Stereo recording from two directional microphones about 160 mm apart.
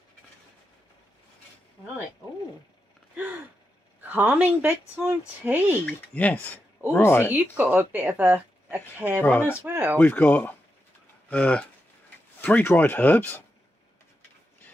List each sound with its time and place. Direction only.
4.1 s speech: 10° right (ahead or behind)
5.9 s speech: 10° left (ahead or behind)
7.3 s speech: 10° right (ahead or behind)
9.2 s speech: 10° left (ahead or behind)
9.6 s speech: 10° right (ahead or behind)
9.9 s speech: 10° left (ahead or behind)